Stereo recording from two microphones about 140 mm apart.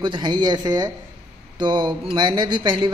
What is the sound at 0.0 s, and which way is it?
A man's voice, 35° right (ahead or behind).